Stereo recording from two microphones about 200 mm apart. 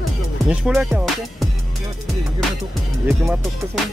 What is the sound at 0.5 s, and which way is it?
Music, 5° right (ahead or behind).